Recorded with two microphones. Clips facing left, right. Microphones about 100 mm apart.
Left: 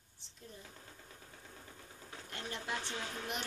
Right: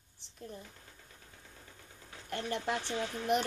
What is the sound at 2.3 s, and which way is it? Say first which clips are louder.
Speech: right 7 dB; 55° right (ahead or behind).